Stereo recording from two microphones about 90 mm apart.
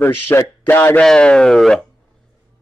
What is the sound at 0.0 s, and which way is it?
Speech, 25° left (ahead or behind).